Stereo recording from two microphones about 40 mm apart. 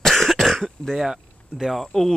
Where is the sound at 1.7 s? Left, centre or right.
Centre.